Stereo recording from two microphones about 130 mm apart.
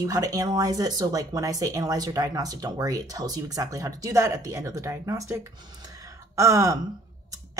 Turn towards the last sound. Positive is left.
turn(degrees=-25)  # may be behind; listen again after turning